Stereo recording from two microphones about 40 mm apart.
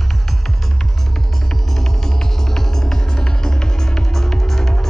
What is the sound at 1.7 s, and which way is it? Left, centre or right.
Music, centre.